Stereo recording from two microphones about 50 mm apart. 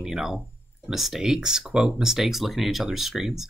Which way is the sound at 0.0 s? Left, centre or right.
Centre.